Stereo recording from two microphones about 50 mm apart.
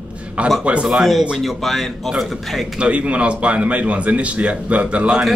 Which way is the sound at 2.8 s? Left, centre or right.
Right.